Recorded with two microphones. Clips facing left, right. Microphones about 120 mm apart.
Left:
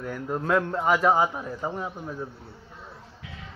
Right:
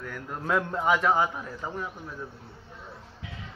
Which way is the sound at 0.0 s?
20° left (ahead or behind).